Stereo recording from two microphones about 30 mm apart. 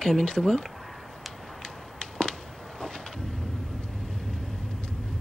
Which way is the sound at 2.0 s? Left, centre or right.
Left.